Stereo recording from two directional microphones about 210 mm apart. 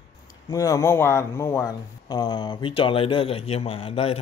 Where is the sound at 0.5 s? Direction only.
15° left (ahead or behind).